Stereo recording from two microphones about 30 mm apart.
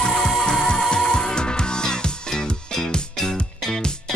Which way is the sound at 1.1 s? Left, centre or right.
Left.